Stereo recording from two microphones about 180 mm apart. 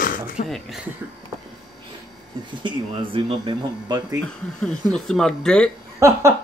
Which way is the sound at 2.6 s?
30° right (ahead or behind).